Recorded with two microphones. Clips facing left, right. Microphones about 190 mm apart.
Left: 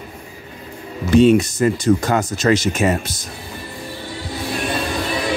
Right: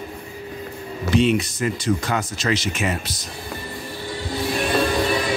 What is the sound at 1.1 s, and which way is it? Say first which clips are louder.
Speech: left 7 dB; 45° left (ahead or behind).